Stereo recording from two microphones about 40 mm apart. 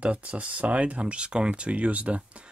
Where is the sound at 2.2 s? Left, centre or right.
Right.